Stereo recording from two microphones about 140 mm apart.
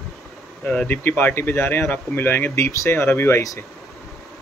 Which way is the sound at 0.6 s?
10° left (ahead or behind).